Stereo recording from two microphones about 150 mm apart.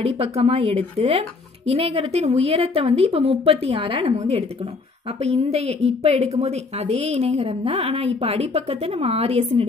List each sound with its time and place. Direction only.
0.0 s a woman's voice: 45° right (ahead or behind)